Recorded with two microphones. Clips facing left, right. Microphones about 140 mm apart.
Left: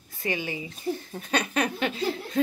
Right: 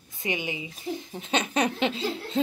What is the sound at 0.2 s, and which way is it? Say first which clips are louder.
Speech: left 1 dB; 20° right (ahead or behind).